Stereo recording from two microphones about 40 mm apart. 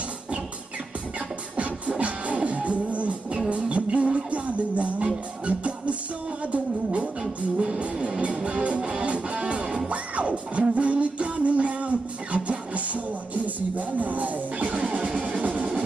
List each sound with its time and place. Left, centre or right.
1.6 s music: right